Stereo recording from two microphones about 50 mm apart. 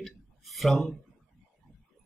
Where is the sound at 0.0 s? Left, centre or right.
Centre.